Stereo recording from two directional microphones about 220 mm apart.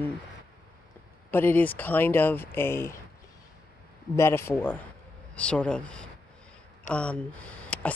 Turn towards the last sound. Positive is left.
turn(degrees=5)  # may be behind; listen again after turning